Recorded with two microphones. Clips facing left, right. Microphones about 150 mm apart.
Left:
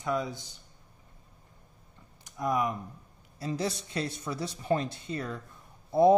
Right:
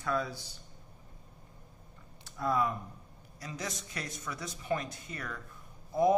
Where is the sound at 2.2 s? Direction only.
15° left (ahead or behind).